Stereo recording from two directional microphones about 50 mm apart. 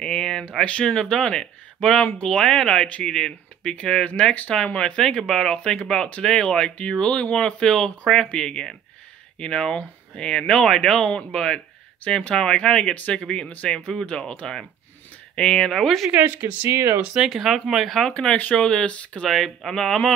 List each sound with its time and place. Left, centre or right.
0.0 s a sound: centre
0.7 s speech: left
3.7 s speech: left
5.6 s speech: left
12.0 s speech: left; by 16.1 s centre
16.6 s speech: right
17.3 s speech: centre
17.8 s speech: centre
18.1 s speech: left
18.7 s speech: centre
19.2 s speech: centre